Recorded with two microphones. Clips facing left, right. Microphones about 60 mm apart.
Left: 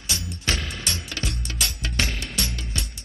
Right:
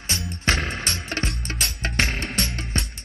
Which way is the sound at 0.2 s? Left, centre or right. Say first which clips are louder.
Right 7 dB; right.